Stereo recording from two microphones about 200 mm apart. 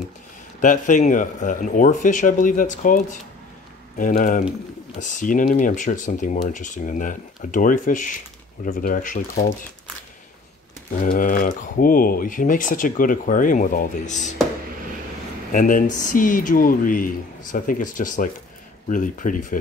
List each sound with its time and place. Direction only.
0.6 s speech: 40° left (ahead or behind)
10.9 s speech: 40° left (ahead or behind)
15.5 s speech: 40° left (ahead or behind)